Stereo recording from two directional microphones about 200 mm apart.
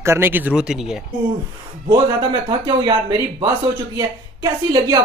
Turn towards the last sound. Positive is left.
turn(degrees=-20)  # may be behind; listen again after turning